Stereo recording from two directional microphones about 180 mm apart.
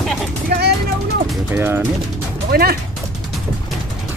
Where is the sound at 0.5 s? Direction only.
60° right (ahead or behind).